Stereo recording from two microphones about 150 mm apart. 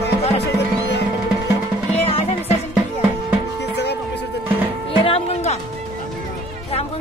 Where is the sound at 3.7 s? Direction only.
90° left.